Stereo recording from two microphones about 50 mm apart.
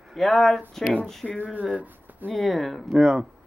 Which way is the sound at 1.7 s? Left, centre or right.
Right.